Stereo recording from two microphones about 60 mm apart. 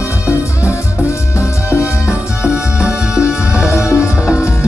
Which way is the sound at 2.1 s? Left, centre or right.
Centre.